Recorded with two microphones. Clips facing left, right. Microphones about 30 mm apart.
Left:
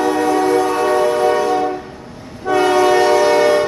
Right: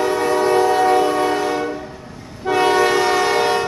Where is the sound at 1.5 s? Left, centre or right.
Centre.